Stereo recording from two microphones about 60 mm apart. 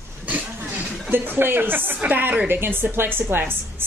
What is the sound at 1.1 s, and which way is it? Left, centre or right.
A woman's voice, right.